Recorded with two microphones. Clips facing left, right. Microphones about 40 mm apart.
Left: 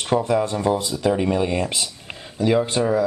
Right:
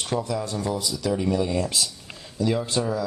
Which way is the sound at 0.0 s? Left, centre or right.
Left.